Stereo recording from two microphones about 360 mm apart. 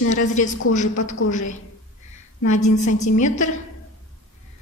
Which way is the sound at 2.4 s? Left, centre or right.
Left.